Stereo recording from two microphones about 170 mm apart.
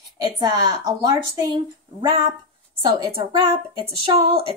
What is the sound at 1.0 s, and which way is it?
Speech, 25° right (ahead or behind).